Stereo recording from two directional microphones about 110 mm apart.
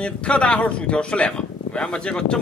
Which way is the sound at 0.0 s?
10° left (ahead or behind).